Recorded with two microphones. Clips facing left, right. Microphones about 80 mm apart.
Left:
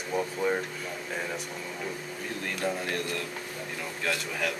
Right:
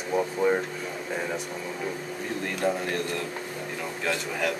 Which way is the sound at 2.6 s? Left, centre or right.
Centre.